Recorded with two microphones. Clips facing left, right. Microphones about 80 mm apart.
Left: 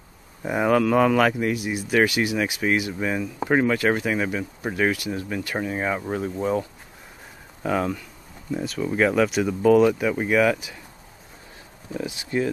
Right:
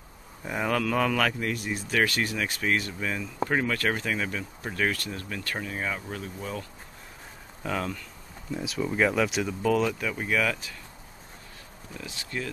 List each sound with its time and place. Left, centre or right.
0.4 s speech: centre
7.6 s speech: centre
11.9 s speech: centre